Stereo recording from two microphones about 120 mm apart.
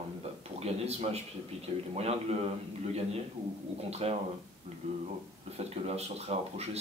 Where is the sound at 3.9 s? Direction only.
60° right (ahead or behind).